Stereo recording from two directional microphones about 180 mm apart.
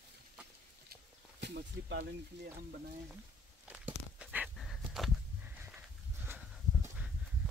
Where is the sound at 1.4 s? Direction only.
75° right (ahead or behind).